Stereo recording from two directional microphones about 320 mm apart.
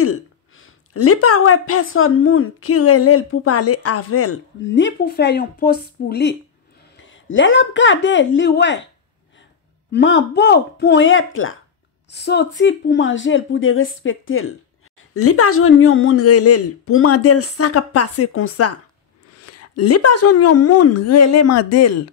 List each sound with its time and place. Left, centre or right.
0.0 s a woman's voice: left
9.8 s a woman's voice: left